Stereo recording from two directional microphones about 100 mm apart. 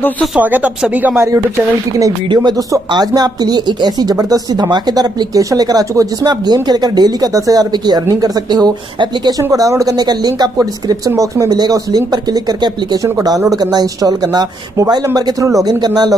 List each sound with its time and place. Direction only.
0.4 s speech: 15° right (ahead or behind)
2.0 s speech: 35° right (ahead or behind)